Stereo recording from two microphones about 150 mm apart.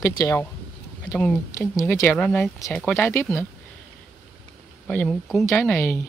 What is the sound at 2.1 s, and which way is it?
Speech, 5° left (ahead or behind).